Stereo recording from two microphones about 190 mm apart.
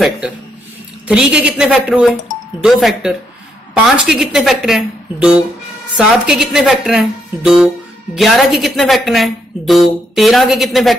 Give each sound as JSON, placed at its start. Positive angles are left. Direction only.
{"t": 1.0, "sound": "speech", "side_deg": -5}